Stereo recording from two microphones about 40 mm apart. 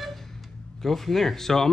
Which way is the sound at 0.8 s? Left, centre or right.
Centre.